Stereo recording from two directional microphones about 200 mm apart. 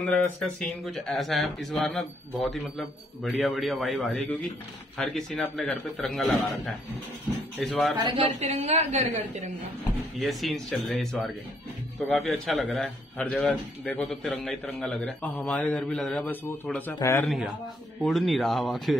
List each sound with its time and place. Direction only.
0.4 s a man's voice: centre (ahead or behind)
8.0 s a woman's voice: 25° right (ahead or behind)
10.1 s a man's voice: centre (ahead or behind)